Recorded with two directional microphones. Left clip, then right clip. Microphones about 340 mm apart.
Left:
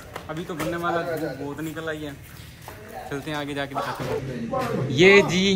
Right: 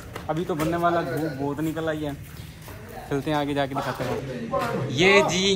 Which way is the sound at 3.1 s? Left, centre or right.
Centre.